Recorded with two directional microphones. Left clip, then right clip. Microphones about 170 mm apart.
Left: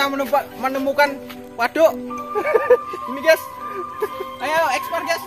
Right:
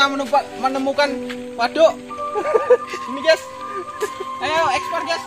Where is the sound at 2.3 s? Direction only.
15° right (ahead or behind).